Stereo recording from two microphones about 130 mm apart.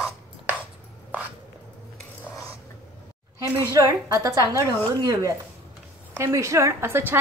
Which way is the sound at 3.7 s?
30° right (ahead or behind).